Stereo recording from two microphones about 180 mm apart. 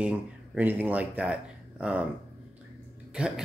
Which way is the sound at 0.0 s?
10° right (ahead or behind).